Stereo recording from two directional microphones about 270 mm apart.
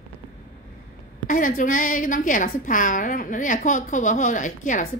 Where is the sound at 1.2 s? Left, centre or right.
Left.